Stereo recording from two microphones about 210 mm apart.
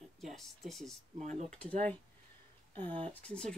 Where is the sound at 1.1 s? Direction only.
35° right (ahead or behind).